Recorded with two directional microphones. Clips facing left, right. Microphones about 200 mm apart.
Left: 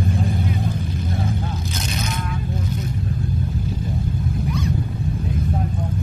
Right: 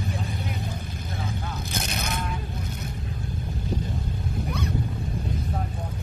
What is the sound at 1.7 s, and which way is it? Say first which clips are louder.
Vehicle: left 4 dB; 55° right (ahead or behind).